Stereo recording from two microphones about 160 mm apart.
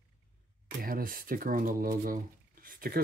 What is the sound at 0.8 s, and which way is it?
Speech, 65° right (ahead or behind).